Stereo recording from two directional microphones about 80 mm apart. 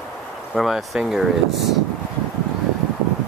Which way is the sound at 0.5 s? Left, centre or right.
Centre.